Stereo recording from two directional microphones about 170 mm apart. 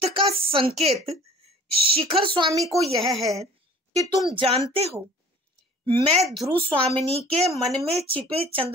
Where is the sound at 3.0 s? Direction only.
Centre (ahead or behind).